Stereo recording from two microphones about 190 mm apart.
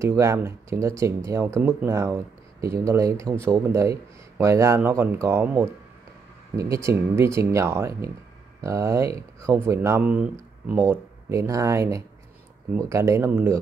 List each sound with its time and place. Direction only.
0.0 s speech: 15° right (ahead or behind)